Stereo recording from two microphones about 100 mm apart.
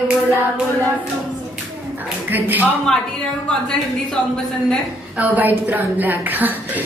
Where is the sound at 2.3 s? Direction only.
20° right (ahead or behind).